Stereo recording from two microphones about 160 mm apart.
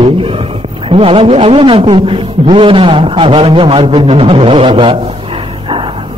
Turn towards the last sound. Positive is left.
turn(degrees=-35)  # may be behind; listen again after turning